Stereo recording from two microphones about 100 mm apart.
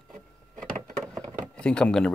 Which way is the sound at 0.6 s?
5° left (ahead or behind).